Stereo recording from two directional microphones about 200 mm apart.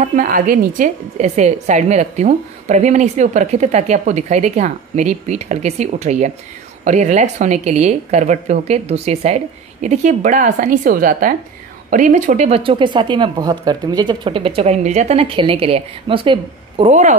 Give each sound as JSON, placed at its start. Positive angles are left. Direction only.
{"t": 0.0, "sound": "a woman's voice", "side_deg": -40}